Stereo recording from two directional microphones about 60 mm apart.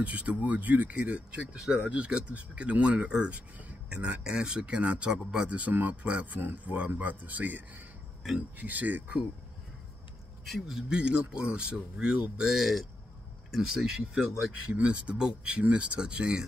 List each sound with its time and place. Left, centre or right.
0.0 s speech: right
5.6 s speech: right
6.0 s speech: centre
10.7 s speech: centre